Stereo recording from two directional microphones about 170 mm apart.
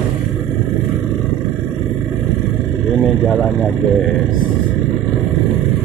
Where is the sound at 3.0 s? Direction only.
Centre (ahead or behind).